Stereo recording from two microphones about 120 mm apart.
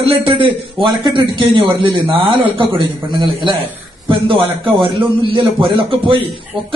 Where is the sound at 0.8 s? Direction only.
40° right (ahead or behind).